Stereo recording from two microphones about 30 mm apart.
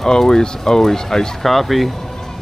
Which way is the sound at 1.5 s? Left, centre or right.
Centre.